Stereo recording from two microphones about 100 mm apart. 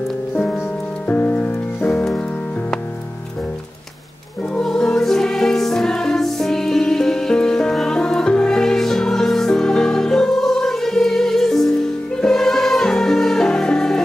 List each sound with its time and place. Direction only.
1.0 s music: 20° left (ahead or behind)
4.6 s music: 5° left (ahead or behind)